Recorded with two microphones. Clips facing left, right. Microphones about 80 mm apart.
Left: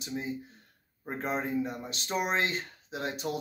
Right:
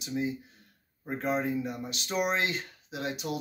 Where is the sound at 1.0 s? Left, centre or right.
Left.